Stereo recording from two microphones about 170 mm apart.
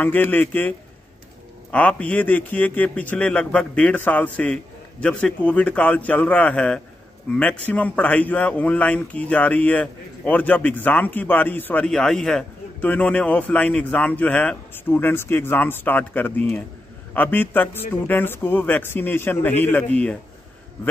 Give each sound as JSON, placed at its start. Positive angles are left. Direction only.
{"t": 0.0, "sound": "speech", "side_deg": 10}